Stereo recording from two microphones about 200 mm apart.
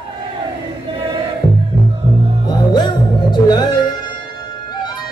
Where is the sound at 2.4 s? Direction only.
20° left (ahead or behind).